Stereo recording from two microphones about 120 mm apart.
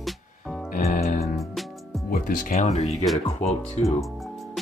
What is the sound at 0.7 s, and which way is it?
Music, 85° left.